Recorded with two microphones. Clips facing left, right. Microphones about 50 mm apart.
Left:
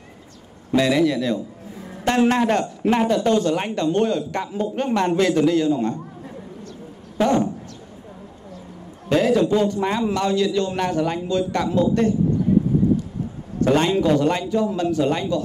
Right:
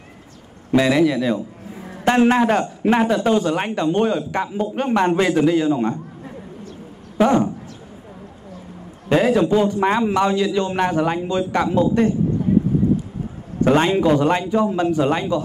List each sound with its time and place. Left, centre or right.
0.7 s a man's voice: centre
9.1 s a man's voice: centre
13.6 s a man's voice: centre